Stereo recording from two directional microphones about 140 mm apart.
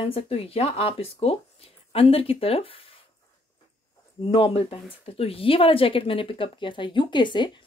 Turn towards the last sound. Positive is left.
turn(degrees=35)  # may be behind; listen again after turning